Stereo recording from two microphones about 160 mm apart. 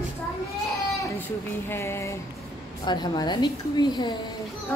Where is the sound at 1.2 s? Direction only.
15° left (ahead or behind).